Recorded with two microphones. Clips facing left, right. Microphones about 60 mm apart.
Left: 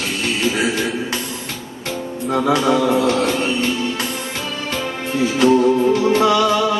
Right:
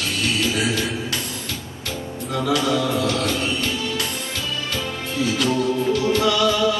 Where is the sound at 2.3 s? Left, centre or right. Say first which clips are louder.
Left 5 dB; left.